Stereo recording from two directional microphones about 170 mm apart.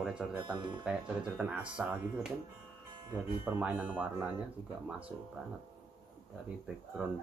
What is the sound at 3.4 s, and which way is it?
Speech, 10° right (ahead or behind).